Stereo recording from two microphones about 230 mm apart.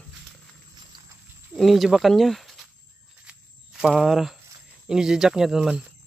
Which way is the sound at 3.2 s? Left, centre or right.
Centre.